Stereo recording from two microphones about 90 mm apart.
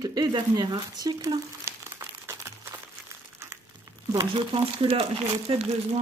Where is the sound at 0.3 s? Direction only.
50° right (ahead or behind).